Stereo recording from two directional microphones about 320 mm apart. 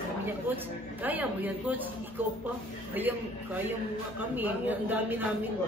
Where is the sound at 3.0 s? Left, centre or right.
Centre.